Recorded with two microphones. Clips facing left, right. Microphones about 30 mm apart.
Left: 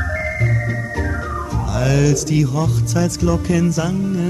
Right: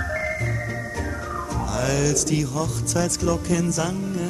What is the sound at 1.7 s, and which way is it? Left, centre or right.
Speech, centre.